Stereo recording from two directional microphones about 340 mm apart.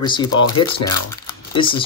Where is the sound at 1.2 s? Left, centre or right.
Centre.